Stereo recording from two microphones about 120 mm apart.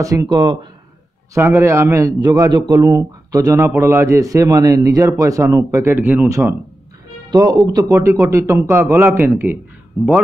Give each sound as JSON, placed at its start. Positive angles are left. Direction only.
{"t": 0.0, "sound": "speech", "side_deg": -30}
{"t": 1.3, "sound": "a man's voice", "side_deg": -20}
{"t": 7.2, "sound": "speech", "side_deg": -35}
{"t": 7.9, "sound": "a man's voice", "side_deg": -25}